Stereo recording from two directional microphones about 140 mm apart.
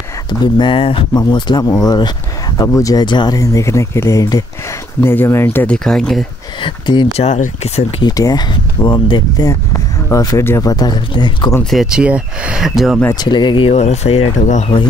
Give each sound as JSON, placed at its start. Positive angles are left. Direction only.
{"t": 0.3, "sound": "speech", "side_deg": 30}
{"t": 5.0, "sound": "speech", "side_deg": 15}
{"t": 6.6, "sound": "speech", "side_deg": 35}
{"t": 7.2, "sound": "speech", "side_deg": 55}
{"t": 8.0, "sound": "speech", "side_deg": 25}
{"t": 9.7, "sound": "speech", "side_deg": 20}
{"t": 11.7, "sound": "speech", "side_deg": -5}
{"t": 13.1, "sound": "speech", "side_deg": 30}